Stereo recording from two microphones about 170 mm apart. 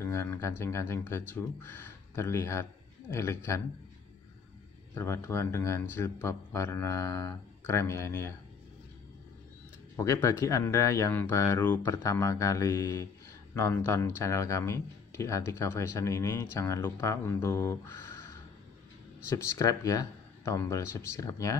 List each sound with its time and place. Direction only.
0.0 s speech: 15° left (ahead or behind)
4.9 s speech: 15° left (ahead or behind)
9.9 s speech: 15° left (ahead or behind)